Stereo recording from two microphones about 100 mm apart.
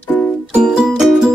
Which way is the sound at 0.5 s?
5° right (ahead or behind).